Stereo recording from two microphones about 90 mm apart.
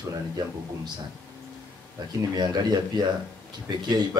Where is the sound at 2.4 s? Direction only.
50° right (ahead or behind).